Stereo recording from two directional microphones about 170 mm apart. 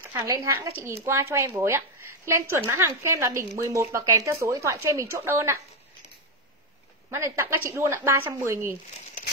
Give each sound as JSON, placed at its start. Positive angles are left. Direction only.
{"t": 0.0, "sound": "speech", "side_deg": -15}
{"t": 7.1, "sound": "speech", "side_deg": -15}